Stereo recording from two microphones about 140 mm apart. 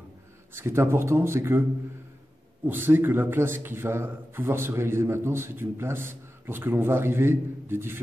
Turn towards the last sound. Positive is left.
turn(degrees=-15)  # may be behind; listen again after turning